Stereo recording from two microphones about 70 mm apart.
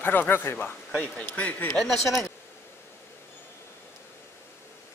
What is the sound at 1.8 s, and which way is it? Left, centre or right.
Speech, centre.